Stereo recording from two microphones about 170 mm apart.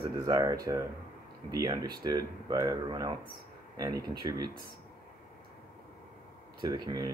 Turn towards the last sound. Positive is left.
turn(degrees=-25)  # may be behind; listen again after turning